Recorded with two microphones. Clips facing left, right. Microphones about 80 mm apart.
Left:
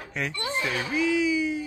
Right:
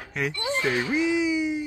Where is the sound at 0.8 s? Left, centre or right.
Right.